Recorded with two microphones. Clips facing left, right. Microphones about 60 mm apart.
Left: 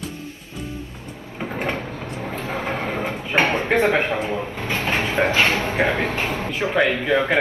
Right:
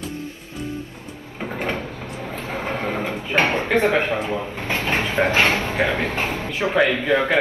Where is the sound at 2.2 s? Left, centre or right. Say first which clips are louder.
Left 1 dB; left.